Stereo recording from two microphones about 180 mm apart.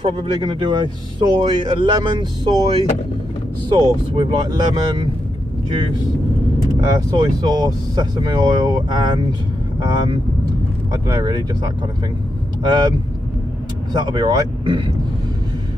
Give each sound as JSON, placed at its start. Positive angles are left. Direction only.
{"t": 0.0, "sound": "speech", "side_deg": -30}
{"t": 6.8, "sound": "speech", "side_deg": -20}
{"t": 13.9, "sound": "speech", "side_deg": -25}